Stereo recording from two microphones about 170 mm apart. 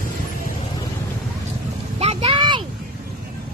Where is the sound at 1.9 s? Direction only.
35° right (ahead or behind).